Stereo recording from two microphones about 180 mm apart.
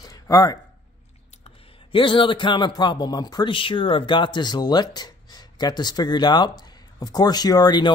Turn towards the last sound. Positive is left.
turn(degrees=25)  # may be behind; listen again after turning